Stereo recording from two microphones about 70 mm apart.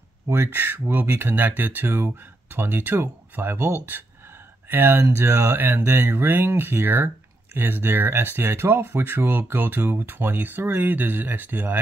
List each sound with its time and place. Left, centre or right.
0.3 s speech: right